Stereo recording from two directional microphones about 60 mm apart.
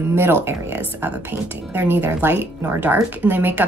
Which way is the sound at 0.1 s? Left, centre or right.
Right.